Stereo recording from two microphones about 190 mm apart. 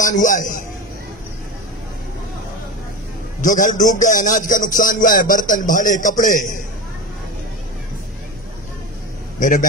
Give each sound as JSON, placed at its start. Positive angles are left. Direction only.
{"t": 0.0, "sound": "a man's voice", "side_deg": 45}
{"t": 3.3, "sound": "a man's voice", "side_deg": 45}
{"t": 9.4, "sound": "a man's voice", "side_deg": 45}